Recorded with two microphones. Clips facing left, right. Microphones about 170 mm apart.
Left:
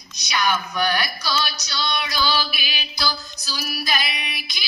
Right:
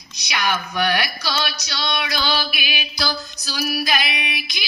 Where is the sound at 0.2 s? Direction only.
60° right (ahead or behind).